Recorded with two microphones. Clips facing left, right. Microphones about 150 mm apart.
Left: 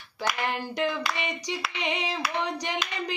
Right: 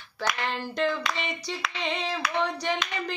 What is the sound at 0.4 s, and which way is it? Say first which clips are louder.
Speech: even; 15° left (ahead or behind).